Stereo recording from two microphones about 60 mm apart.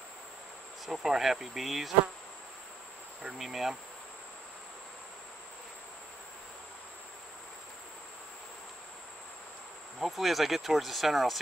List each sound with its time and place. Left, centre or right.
0.8 s speech: centre
3.3 s speech: centre
9.9 s speech: centre